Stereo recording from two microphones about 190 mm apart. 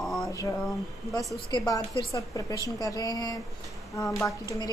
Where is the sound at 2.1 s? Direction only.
20° left (ahead or behind).